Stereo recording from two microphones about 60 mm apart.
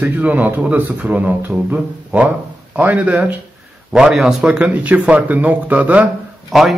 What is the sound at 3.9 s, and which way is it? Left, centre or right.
A man's voice, centre.